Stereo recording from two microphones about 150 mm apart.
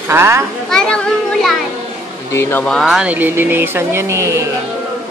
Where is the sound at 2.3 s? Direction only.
15° left (ahead or behind).